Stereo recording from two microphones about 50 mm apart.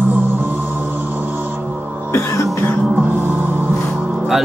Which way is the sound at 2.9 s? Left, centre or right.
Right.